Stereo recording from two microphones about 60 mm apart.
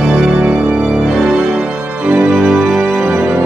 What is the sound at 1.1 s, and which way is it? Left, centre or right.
Organ, centre.